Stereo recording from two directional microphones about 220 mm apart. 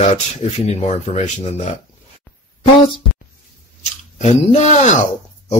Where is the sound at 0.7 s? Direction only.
30° left (ahead or behind).